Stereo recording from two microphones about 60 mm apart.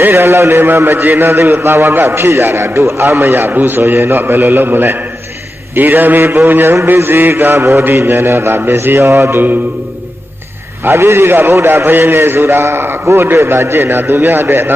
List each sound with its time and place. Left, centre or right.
0.1 s a man's voice: right
1.3 s a man's voice: right
7.8 s mantra: right
10.8 s mantra: right
11.6 s a man's voice: right